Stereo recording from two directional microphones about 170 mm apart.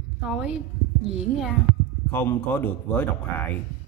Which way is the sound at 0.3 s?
5° right (ahead or behind).